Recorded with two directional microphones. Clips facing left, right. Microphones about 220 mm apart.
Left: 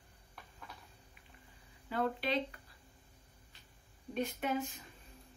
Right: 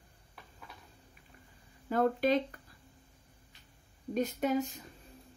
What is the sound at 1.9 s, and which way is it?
Speech, 45° right (ahead or behind).